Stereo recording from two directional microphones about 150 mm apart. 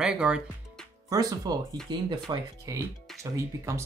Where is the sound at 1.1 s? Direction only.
25° right (ahead or behind).